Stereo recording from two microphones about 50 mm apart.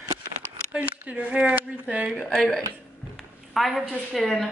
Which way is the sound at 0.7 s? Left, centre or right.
Right.